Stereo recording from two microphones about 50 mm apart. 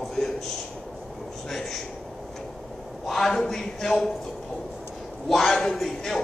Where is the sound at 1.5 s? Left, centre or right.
Centre.